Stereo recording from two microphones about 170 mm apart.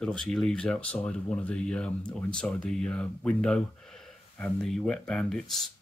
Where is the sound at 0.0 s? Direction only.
5° left (ahead or behind).